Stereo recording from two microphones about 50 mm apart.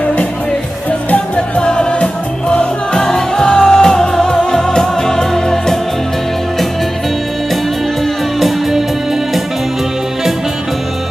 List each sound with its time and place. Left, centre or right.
0.0 s music: left
1.6 s music: centre
8.4 s music: centre